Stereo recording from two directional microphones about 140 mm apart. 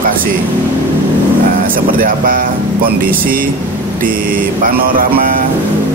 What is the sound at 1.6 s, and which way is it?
Speech, 90° right.